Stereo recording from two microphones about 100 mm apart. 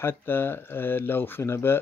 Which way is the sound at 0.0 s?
25° left (ahead or behind).